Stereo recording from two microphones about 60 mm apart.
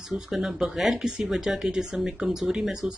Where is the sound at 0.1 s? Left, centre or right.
Centre.